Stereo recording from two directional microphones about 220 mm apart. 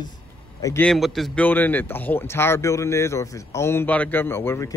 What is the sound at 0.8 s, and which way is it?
Speech, centre (ahead or behind).